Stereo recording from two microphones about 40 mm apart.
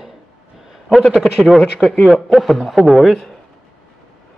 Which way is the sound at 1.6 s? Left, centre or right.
Left.